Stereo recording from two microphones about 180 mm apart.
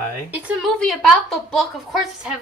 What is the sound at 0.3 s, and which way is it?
A woman's voice, centre (ahead or behind).